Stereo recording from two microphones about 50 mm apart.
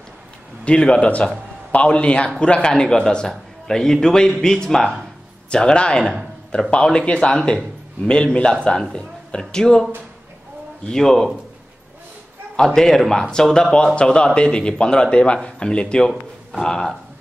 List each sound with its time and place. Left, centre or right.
0.7 s a man's voice: centre
10.9 s speech: centre
12.5 s a man's voice: centre